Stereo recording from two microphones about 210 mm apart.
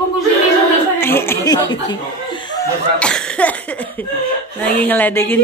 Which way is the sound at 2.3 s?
20° left (ahead or behind).